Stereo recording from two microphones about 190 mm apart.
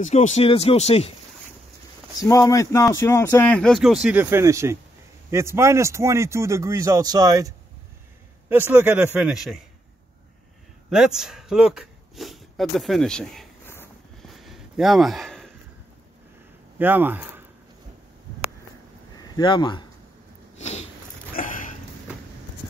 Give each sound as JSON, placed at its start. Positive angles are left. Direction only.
{"t": 0.0, "sound": "speech", "side_deg": 40}
{"t": 2.1, "sound": "speech", "side_deg": 15}
{"t": 10.9, "sound": "speech", "side_deg": -5}
{"t": 14.2, "sound": "a sound", "side_deg": 0}
{"t": 16.7, "sound": "speech", "side_deg": -10}
{"t": 19.1, "sound": "speech", "side_deg": 25}
{"t": 20.5, "sound": "a sound", "side_deg": 35}